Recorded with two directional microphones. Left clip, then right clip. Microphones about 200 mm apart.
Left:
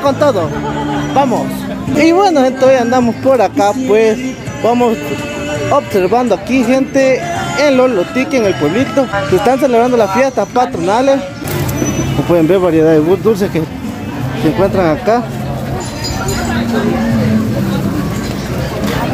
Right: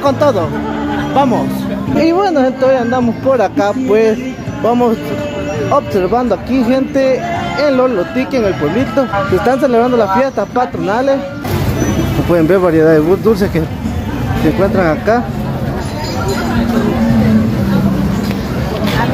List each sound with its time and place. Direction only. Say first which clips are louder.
0.0 s speech: even; 10° left (ahead or behind)
2.0 s speech: left 3 dB; 20° left (ahead or behind)
12.3 s speech: even; 10° left (ahead or behind)
14.6 s speech: left 2 dB; 10° left (ahead or behind)